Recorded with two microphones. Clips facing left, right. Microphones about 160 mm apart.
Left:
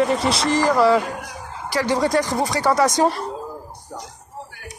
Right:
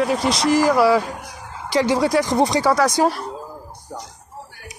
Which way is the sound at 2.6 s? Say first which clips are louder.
Even; centre (ahead or behind).